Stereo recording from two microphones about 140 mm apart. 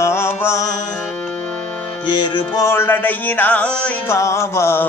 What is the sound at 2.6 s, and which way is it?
Music, 15° left (ahead or behind).